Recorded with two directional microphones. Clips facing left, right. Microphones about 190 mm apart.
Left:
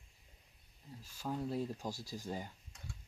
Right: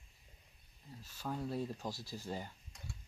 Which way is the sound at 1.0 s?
10° left (ahead or behind).